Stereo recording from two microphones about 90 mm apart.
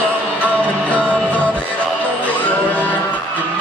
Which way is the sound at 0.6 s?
15° left (ahead or behind).